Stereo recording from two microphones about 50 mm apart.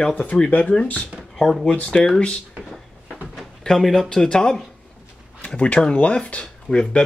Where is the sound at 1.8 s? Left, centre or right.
Left.